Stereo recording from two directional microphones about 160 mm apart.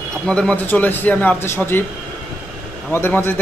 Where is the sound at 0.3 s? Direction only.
5° left (ahead or behind).